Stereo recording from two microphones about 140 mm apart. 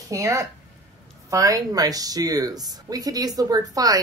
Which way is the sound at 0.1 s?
25° right (ahead or behind).